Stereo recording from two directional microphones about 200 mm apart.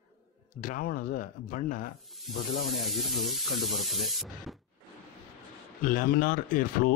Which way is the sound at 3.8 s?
Centre (ahead or behind).